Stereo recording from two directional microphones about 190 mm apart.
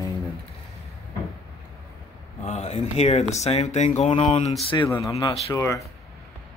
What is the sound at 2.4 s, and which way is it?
Speech, 35° left (ahead or behind).